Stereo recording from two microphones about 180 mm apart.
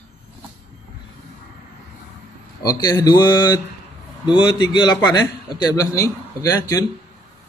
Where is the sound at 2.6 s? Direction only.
20° left (ahead or behind).